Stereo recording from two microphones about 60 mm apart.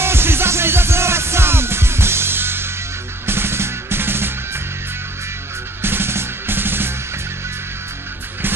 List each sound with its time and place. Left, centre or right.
0.0 s music: right
5.8 s music: right